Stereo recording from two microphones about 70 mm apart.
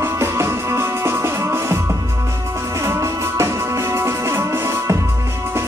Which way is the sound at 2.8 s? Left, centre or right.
Right.